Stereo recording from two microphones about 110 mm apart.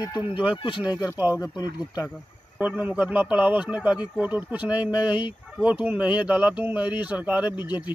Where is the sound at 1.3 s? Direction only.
35° left (ahead or behind).